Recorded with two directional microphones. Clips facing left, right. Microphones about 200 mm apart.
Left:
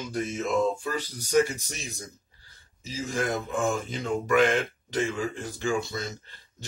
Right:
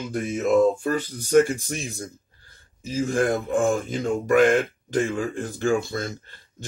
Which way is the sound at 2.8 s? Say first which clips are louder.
Right 7 dB; 50° right (ahead or behind).